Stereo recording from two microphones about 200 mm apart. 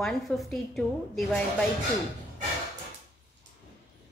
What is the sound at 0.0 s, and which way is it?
A woman's voice, centre (ahead or behind).